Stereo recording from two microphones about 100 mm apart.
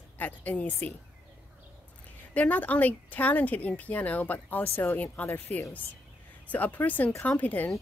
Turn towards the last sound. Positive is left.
turn(degrees=15)  # may be behind; listen again after turning